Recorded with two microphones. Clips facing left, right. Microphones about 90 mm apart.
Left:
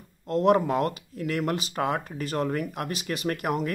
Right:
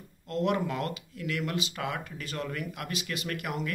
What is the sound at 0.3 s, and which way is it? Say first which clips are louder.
Speech: left 7 dB; 40° left (ahead or behind).